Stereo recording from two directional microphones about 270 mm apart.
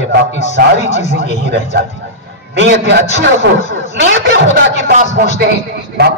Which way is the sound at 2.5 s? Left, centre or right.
Right.